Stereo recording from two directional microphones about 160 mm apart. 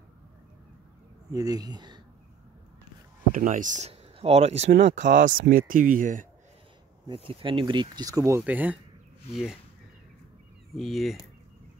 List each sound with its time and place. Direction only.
1.3 s speech: 20° right (ahead or behind)
3.3 s speech: 50° right (ahead or behind)
7.2 s speech: 30° right (ahead or behind); by 9.6 s centre (ahead or behind)
10.7 s speech: centre (ahead or behind)